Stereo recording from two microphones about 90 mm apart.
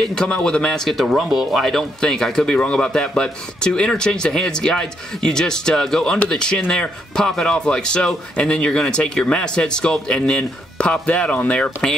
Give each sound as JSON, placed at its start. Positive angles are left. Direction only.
{"t": 0.0, "sound": "speech", "side_deg": 10}